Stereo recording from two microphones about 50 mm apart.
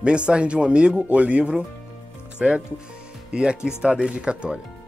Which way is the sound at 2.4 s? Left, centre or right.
Centre.